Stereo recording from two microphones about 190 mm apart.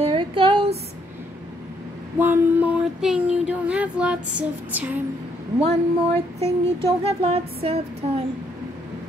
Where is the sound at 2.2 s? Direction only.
10° right (ahead or behind).